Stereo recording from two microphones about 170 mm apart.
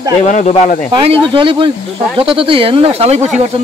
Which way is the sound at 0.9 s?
30° right (ahead or behind).